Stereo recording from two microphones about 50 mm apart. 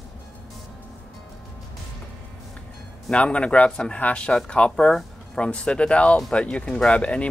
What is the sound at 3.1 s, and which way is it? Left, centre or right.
Speech, left.